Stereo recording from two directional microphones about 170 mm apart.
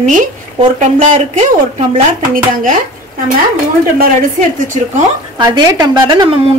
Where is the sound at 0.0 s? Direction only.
50° right (ahead or behind).